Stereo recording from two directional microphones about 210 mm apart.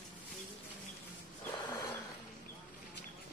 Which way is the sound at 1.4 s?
10° left (ahead or behind).